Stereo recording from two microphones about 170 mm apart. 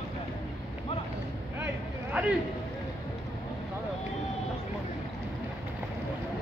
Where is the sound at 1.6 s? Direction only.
10° right (ahead or behind).